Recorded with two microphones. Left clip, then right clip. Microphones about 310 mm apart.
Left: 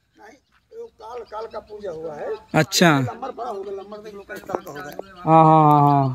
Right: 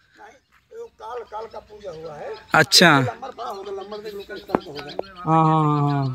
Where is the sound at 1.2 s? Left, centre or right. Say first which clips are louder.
Left 3 dB; right.